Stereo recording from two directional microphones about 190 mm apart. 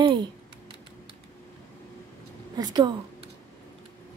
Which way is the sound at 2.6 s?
20° right (ahead or behind).